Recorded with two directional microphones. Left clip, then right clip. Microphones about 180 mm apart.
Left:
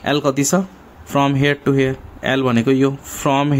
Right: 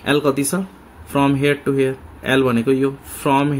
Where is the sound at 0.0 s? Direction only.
30° left (ahead or behind).